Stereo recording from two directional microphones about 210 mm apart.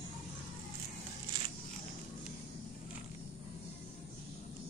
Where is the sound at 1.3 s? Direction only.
20° right (ahead or behind).